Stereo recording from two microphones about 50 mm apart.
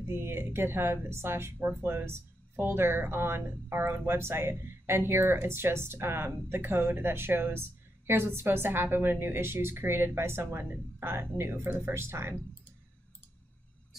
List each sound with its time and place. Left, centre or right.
0.0 s a woman's voice: right